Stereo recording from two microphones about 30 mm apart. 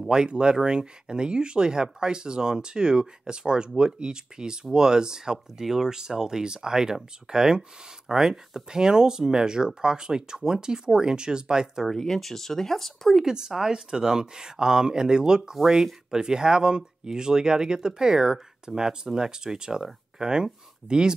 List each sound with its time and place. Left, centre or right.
0.1 s speech: right
11.9 s speech: centre
13.2 s speech: right
15.5 s speech: centre
16.1 s speech: right